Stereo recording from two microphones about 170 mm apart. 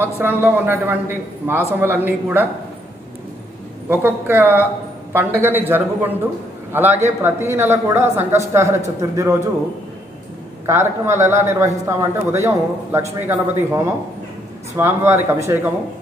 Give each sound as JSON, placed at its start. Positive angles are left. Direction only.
{"t": 0.0, "sound": "a man's voice", "side_deg": -15}
{"t": 3.9, "sound": "a man's voice", "side_deg": -10}
{"t": 10.7, "sound": "a man's voice", "side_deg": -15}